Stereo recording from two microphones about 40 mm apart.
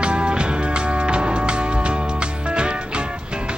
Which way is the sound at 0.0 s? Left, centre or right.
Right.